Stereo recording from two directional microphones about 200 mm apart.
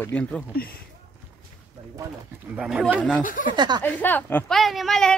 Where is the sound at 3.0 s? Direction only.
5° left (ahead or behind).